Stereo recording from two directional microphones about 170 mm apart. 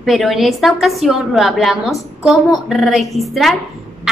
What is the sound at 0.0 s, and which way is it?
A woman's voice, centre (ahead or behind).